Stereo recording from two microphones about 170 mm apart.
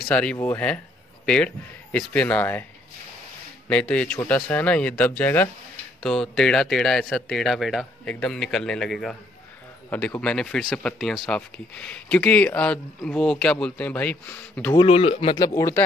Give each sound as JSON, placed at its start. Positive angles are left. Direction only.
{"t": 0.1, "sound": "speech", "side_deg": 5}
{"t": 3.6, "sound": "speech", "side_deg": 5}
{"t": 14.8, "sound": "speech", "side_deg": 35}
{"t": 15.3, "sound": "speech", "side_deg": 20}